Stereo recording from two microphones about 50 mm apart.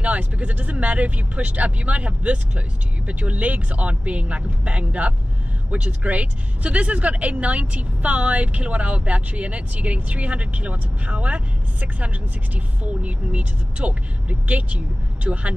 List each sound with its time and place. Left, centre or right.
0.0 s speech: right
15.2 s speech: right